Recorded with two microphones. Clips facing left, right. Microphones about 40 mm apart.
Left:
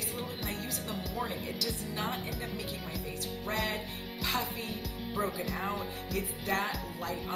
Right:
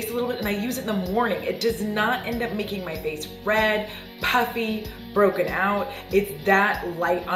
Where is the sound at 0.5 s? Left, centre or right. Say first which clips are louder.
Right 12 dB; right.